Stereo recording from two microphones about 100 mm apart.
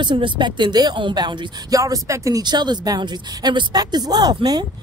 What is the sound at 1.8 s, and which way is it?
Speech, 30° right (ahead or behind).